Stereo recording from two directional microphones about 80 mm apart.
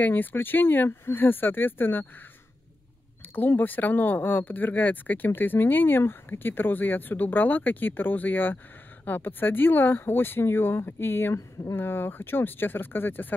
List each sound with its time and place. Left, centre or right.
0.0 s speech: left
3.3 s speech: left